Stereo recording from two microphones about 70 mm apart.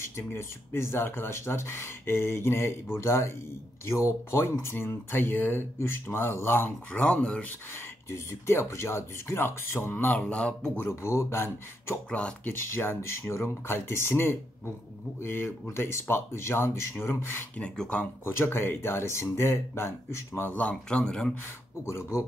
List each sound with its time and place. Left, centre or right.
0.0 s speech: left
6.9 s speech: centre
8.1 s speech: left
10.2 s speech: centre
10.9 s speech: left
12.1 s speech: centre
12.5 s speech: left
17.6 s speech: centre
18.2 s speech: left
20.9 s speech: centre
21.8 s speech: left